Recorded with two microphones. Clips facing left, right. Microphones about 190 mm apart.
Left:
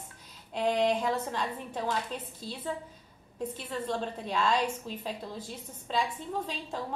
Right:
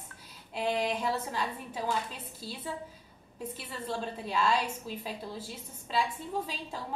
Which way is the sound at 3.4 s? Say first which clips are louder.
Left 5 dB; 5° right (ahead or behind).